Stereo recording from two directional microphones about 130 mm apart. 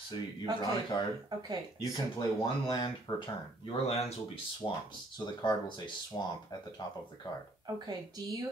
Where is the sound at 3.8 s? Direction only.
50° left (ahead or behind).